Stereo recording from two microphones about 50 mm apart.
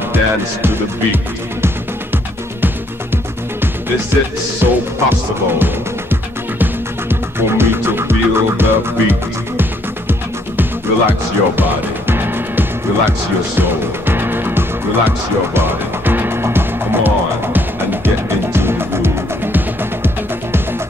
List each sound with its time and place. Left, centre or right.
0.1 s speech: right
4.6 s music: right
10.6 s music: right